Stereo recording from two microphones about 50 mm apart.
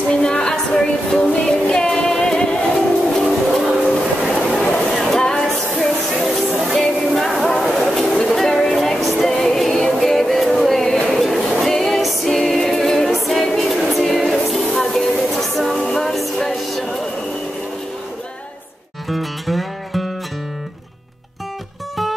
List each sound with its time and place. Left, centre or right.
0.2 s music: centre
4.2 s a sound: centre
5.1 s music: centre
13.1 s music: centre
19.0 s music: centre